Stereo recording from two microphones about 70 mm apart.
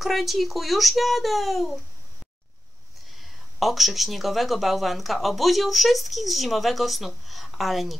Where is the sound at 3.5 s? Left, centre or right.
Centre.